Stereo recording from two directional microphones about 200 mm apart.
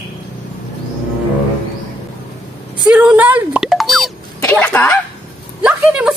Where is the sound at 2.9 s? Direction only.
5° right (ahead or behind).